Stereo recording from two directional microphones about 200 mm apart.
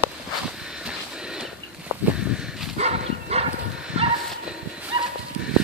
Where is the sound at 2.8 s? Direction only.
35° right (ahead or behind).